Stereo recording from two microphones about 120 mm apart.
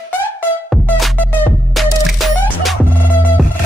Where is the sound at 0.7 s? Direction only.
Centre (ahead or behind).